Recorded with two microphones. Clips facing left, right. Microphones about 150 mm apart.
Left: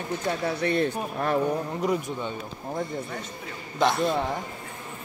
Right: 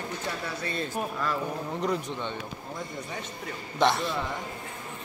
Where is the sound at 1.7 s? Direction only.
5° left (ahead or behind).